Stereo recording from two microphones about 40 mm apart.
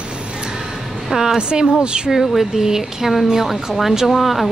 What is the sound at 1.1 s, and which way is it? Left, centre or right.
Speech, centre.